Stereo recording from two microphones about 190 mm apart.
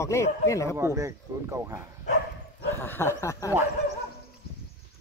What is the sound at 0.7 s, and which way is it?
Speech, 15° right (ahead or behind).